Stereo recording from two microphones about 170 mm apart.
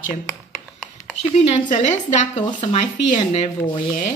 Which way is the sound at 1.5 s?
45° left (ahead or behind).